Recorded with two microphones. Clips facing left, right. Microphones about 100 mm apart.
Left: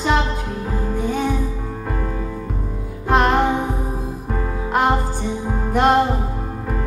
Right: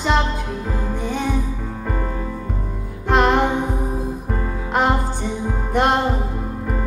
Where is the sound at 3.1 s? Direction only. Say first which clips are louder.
Even; centre (ahead or behind).